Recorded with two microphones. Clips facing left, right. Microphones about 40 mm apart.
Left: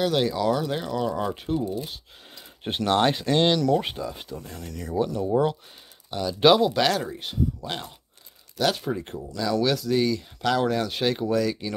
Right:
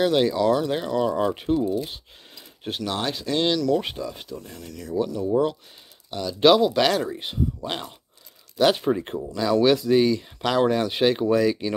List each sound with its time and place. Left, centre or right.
0.0 s speech: centre
2.7 s speech: left
3.3 s speech: centre
3.8 s speech: centre
7.2 s speech: centre